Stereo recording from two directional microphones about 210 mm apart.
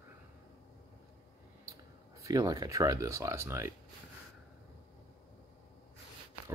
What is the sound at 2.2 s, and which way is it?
Speech, 15° right (ahead or behind).